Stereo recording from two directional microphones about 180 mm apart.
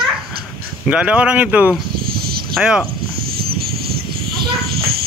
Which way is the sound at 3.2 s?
60° right (ahead or behind).